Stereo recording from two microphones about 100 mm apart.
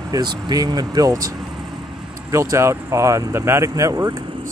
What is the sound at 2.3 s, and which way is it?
Speech, 30° right (ahead or behind).